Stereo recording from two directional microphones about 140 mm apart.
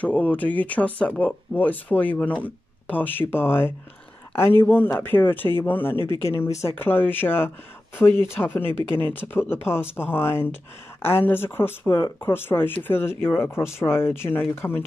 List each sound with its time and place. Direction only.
0.0 s speech: 10° left (ahead or behind)